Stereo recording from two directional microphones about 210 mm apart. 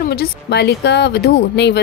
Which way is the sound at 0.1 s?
50° left (ahead or behind).